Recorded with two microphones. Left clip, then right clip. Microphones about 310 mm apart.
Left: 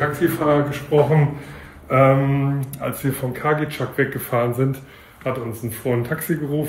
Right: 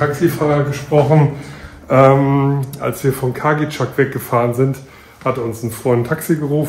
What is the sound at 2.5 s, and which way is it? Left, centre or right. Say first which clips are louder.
Speech: right 5 dB; centre.